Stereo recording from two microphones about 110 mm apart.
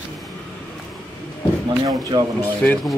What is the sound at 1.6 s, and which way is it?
Speech, 35° right (ahead or behind).